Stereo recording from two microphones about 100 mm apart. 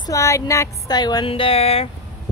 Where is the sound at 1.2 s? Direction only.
65° left (ahead or behind).